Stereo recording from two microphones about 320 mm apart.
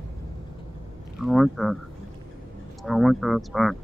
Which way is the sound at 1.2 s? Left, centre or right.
Centre.